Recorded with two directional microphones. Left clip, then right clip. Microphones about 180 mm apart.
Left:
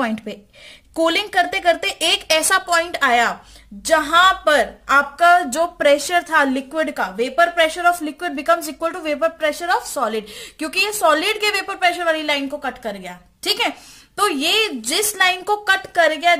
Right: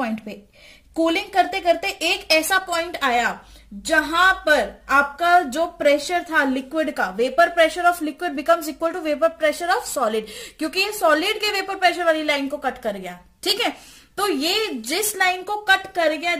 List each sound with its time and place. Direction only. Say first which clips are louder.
0.9 s a woman's voice: left 2 dB; 40° left (ahead or behind)